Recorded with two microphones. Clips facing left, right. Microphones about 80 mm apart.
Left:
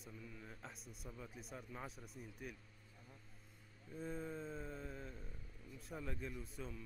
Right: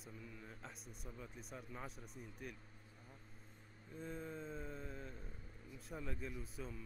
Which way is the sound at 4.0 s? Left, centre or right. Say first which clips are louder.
Left 2 dB; centre.